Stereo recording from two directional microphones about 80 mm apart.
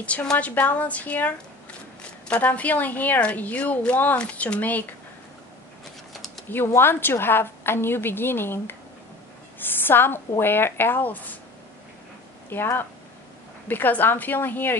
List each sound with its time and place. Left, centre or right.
0.0 s a woman's voice: centre
6.8 s a woman's voice: left
12.4 s speech: left